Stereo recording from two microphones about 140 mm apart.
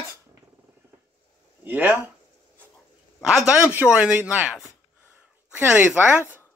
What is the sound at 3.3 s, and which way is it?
Speech, 5° right (ahead or behind).